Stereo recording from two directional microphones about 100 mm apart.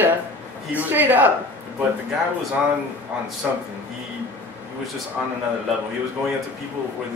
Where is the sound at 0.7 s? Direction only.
20° right (ahead or behind).